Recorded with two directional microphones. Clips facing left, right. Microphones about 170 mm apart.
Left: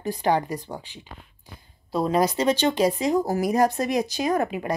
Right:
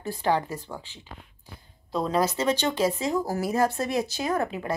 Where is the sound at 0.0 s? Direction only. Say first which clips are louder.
Left 3 dB; 15° left (ahead or behind).